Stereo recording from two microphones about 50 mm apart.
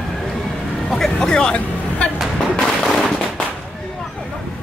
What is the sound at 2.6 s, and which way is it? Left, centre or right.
Firecracker, centre.